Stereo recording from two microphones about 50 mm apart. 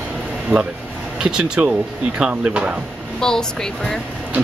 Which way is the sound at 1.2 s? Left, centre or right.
Centre.